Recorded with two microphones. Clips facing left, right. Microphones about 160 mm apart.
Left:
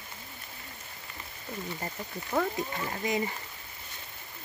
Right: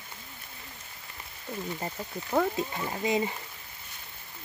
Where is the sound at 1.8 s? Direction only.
15° right (ahead or behind).